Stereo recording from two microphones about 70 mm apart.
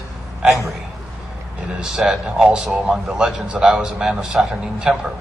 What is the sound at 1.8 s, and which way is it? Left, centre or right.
A man's voice, centre.